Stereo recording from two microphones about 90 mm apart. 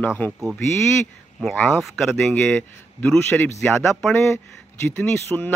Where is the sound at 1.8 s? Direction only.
Centre (ahead or behind).